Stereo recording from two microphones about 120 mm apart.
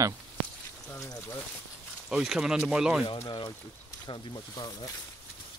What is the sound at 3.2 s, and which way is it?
Speech, 40° left (ahead or behind).